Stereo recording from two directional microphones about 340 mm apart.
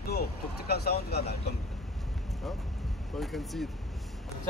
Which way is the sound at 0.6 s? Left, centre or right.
Left.